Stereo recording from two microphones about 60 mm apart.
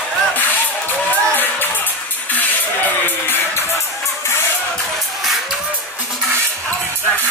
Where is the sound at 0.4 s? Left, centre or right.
Left.